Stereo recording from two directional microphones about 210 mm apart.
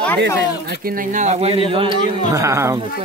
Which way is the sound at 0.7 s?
45° right (ahead or behind).